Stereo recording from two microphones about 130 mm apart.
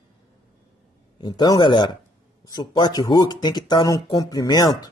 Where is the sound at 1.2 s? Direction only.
35° left (ahead or behind).